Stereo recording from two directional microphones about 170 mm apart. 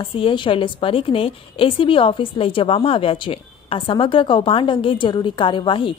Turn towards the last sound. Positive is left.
turn(degrees=30)  # may be behind; listen again after turning